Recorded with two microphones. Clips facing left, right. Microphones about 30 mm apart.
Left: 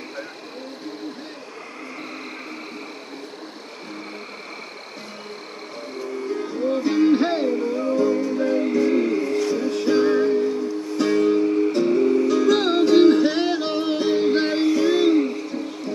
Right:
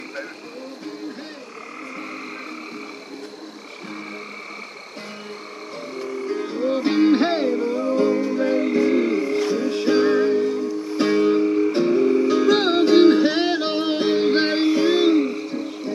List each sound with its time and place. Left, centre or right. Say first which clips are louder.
6.7 s music: right 1 dB; right
8.5 s music: right 1 dB; right